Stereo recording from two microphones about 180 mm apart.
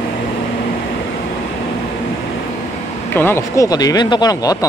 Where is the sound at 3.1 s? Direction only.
10° left (ahead or behind).